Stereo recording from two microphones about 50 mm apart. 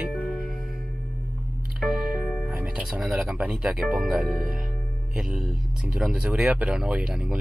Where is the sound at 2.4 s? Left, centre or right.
Right.